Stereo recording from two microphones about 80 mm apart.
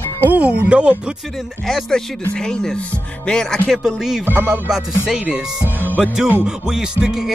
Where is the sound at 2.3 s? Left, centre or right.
Centre.